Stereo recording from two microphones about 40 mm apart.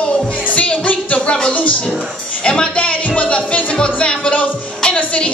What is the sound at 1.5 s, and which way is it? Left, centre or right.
Speech, left.